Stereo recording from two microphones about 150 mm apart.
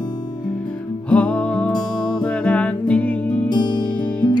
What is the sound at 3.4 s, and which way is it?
Music, 30° left (ahead or behind).